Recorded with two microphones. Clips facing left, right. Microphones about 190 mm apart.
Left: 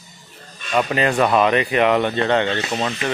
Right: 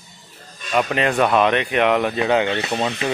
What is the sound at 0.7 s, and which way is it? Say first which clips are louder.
Speech: left 1 dB; centre (ahead or behind).